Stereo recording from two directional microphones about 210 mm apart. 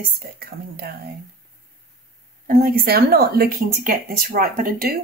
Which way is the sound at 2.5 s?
45° right (ahead or behind).